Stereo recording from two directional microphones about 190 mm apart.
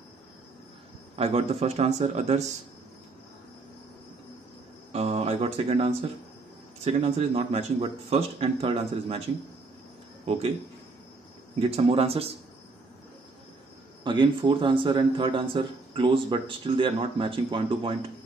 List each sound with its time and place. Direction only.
1.1 s speech: 30° right (ahead or behind)
4.9 s a sound: 35° right (ahead or behind)
6.8 s speech: 30° right (ahead or behind)
11.7 s speech: 30° right (ahead or behind)
14.0 s speech: 25° right (ahead or behind)